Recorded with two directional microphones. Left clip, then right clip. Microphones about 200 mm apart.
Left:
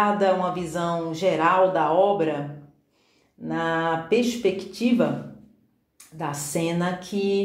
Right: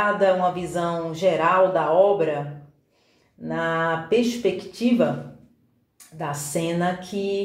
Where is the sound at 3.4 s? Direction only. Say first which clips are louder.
Right 1 dB; 25° left (ahead or behind).